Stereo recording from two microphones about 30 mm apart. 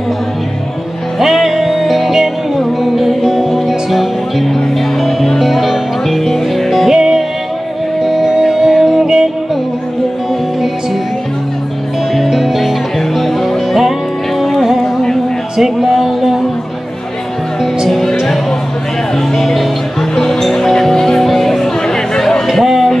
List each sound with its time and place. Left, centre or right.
1.2 s music: centre
6.9 s music: centre
12.2 s music: centre
15.5 s music: centre
17.8 s music: centre
19.3 s music: centre
21.8 s chatter: centre
22.7 s music: centre